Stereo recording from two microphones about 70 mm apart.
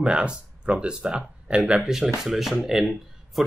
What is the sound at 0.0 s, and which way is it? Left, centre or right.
Speech, centre.